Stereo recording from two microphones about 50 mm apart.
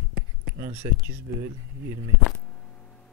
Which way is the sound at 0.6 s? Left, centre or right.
Right.